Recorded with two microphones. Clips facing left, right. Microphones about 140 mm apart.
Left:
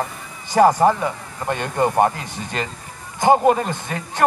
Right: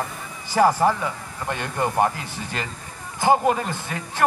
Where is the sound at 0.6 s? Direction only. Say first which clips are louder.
Left 4 dB; 20° left (ahead or behind).